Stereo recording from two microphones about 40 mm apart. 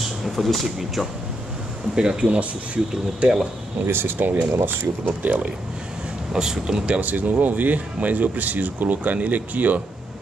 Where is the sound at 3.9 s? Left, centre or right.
Right.